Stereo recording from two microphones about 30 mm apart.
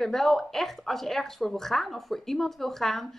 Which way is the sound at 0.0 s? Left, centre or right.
Centre.